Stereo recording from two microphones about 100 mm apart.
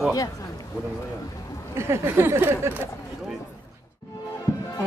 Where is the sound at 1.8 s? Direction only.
25° right (ahead or behind).